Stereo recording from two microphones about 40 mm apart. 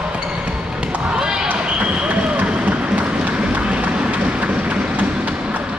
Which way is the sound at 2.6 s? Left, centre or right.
Right.